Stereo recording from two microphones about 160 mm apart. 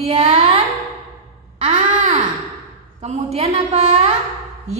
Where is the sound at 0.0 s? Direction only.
40° right (ahead or behind).